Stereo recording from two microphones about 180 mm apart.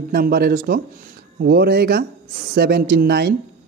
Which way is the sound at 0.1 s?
55° right (ahead or behind).